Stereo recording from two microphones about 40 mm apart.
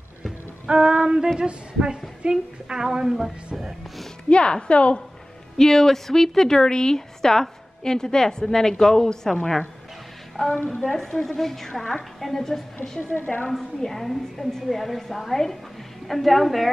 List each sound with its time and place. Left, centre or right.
0.7 s a sound: right
4.3 s a woman's voice: left
5.6 s a woman's voice: centre
10.5 s a woman's voice: left
10.8 s a woman's voice: centre